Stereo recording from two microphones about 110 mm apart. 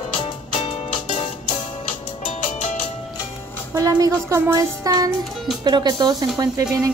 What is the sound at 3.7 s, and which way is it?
A woman's voice, 30° right (ahead or behind).